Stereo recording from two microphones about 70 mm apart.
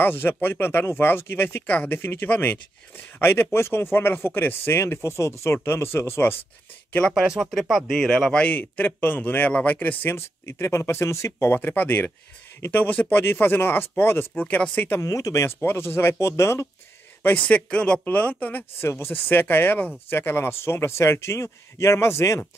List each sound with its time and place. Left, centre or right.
0.0 s speech: left
7.2 s speech: centre
8.5 s speech: left
14.4 s speech: left
15.0 s speech: left
15.4 s speech: left
17.2 s speech: left